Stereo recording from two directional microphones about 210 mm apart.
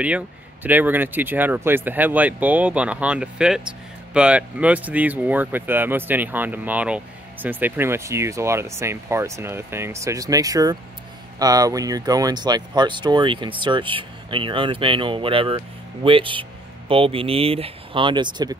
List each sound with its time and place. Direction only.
0.7 s speech: 10° right (ahead or behind)